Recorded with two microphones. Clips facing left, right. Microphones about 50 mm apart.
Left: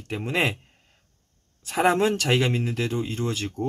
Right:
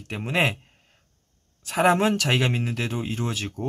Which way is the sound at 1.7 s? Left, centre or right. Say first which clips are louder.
Right 1 dB; centre.